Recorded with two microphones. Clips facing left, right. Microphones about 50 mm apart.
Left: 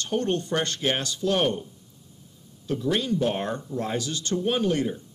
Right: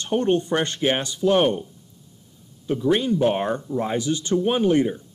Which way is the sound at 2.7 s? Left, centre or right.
Centre.